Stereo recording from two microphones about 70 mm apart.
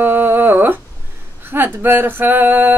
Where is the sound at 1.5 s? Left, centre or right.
Right.